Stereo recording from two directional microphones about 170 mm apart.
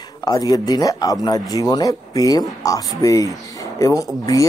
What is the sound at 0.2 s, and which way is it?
Speech, 20° left (ahead or behind).